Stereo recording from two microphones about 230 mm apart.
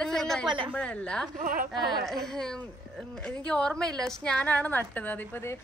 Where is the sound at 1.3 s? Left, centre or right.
Right.